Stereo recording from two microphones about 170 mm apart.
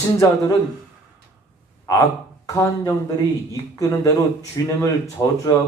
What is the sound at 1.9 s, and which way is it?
Speech, 20° left (ahead or behind).